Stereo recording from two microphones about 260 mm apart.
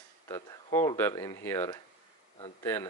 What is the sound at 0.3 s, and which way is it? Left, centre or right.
Speech, centre.